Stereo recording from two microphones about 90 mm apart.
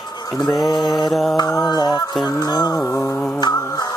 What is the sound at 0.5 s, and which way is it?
Music, centre (ahead or behind).